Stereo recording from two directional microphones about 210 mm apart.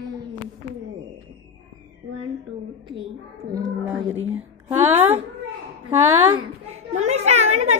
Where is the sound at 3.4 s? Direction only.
45° right (ahead or behind).